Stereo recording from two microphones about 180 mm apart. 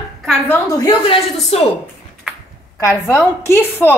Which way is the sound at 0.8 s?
30° left (ahead or behind).